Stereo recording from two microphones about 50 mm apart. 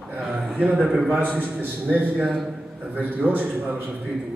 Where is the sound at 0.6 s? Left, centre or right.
Right.